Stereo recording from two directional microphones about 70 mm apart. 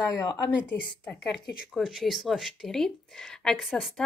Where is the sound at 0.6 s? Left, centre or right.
Left.